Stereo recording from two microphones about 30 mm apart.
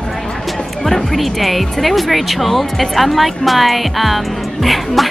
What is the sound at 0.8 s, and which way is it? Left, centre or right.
Speech, centre.